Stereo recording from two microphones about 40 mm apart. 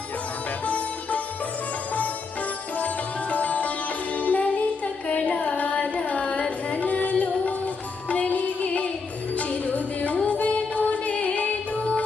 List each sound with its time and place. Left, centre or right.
0.7 s sitar: left
2.8 s sitar: left
5.0 s music: left
5.4 s carnatic music: left
6.7 s music: left